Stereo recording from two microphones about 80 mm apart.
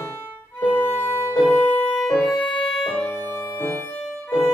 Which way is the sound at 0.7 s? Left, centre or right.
Left.